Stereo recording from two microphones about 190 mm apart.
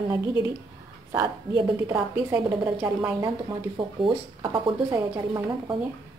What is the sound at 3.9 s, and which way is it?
Speech, 25° right (ahead or behind).